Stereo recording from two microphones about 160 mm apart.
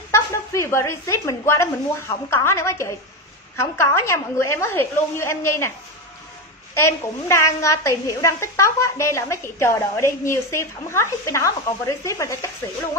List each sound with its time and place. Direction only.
0.1 s a woman's voice: 15° left (ahead or behind)
6.7 s a woman's voice: 15° left (ahead or behind)